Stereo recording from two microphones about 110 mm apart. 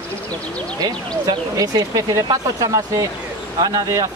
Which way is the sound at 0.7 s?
35° right (ahead or behind).